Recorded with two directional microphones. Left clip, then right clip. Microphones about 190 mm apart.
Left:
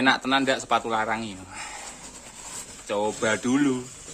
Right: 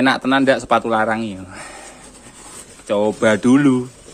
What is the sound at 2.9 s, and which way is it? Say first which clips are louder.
Speech: right 9 dB; 30° right (ahead or behind).